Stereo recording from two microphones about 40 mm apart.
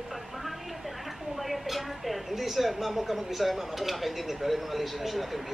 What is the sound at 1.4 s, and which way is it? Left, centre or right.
A woman's voice, centre.